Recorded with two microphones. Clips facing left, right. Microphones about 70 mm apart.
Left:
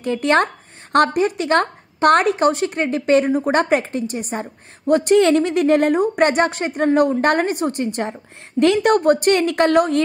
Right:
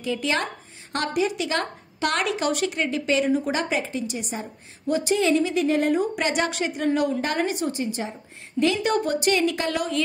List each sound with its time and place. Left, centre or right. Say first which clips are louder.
0.0 s speech: left 8 dB; left